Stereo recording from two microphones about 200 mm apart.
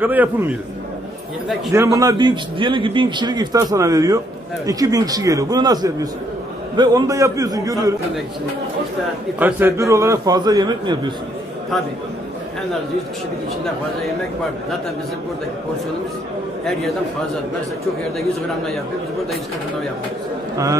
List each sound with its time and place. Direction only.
0.0 s a man's voice: 10° right (ahead or behind)
1.7 s a man's voice: 15° right (ahead or behind)
9.4 s a man's voice: 10° right (ahead or behind)